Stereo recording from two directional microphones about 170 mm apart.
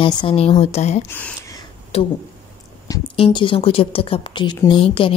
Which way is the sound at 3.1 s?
30° left (ahead or behind).